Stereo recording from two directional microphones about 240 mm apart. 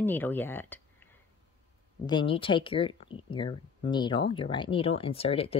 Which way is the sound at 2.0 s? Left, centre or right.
Centre.